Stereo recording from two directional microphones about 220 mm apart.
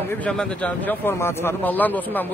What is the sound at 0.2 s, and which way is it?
A man's voice, 5° left (ahead or behind).